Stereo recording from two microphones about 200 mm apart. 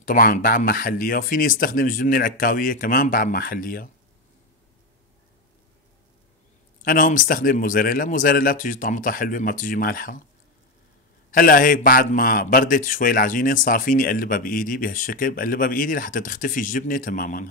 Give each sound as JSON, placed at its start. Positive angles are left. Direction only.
{"t": 0.0, "sound": "a man's voice", "side_deg": 45}
{"t": 6.8, "sound": "a man's voice", "side_deg": 45}
{"t": 11.3, "sound": "a man's voice", "side_deg": 45}